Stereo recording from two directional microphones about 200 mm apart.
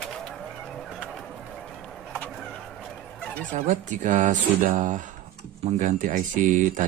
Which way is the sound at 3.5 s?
40° right (ahead or behind).